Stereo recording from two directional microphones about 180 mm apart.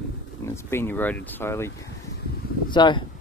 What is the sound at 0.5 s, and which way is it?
Speech, 15° left (ahead or behind).